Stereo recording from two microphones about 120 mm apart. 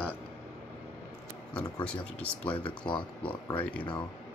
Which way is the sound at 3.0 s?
40° left (ahead or behind).